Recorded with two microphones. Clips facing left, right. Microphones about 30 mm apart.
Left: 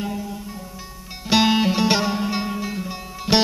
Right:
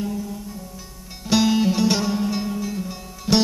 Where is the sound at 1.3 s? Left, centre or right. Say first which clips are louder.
Left 1 dB; left.